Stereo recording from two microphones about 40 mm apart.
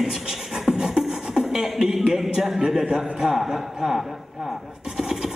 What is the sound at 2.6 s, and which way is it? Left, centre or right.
Speech, centre.